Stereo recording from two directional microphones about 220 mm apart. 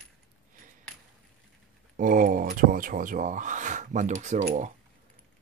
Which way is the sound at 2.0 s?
40° right (ahead or behind).